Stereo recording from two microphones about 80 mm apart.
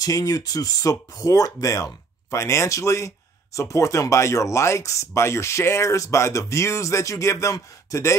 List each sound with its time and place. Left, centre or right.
0.0 s speech: left